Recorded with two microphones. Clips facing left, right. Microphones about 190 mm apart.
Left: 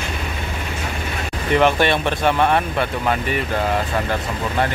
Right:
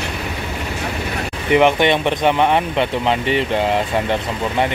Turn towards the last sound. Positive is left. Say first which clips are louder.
# right 2 dB
turn(degrees=-25)  # may be behind; listen again after turning